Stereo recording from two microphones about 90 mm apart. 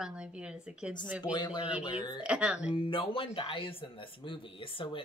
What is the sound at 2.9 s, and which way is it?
Speech, 80° left.